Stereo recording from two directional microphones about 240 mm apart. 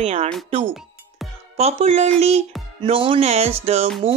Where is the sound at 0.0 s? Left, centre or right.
Right.